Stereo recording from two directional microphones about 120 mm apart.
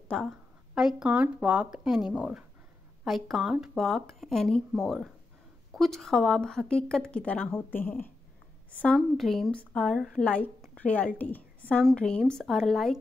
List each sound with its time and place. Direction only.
0.1 s a woman's voice: 5° left (ahead or behind)